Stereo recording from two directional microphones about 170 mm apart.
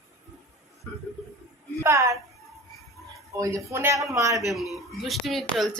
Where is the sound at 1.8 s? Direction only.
20° right (ahead or behind).